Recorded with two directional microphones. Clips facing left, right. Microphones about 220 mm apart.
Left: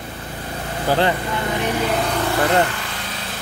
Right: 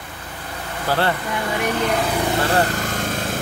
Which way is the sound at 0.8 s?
15° left (ahead or behind).